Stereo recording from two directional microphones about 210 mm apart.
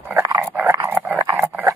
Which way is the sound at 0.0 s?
15° right (ahead or behind).